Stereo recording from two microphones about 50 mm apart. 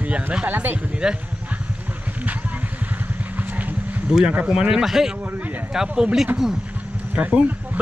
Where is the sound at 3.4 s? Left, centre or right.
Right.